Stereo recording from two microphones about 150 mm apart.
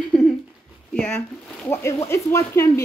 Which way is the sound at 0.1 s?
Centre (ahead or behind).